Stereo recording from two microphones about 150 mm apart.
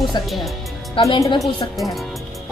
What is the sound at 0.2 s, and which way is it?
A woman's voice, 30° left (ahead or behind).